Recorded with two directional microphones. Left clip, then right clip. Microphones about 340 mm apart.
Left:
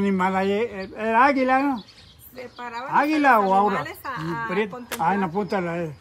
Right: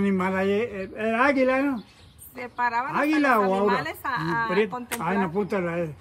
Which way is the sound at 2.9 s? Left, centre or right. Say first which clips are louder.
Left 8 dB; centre.